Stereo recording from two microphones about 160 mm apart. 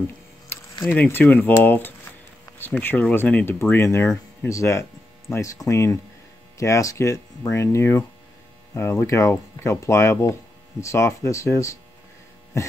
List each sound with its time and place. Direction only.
0.5 s speech: 15° left (ahead or behind)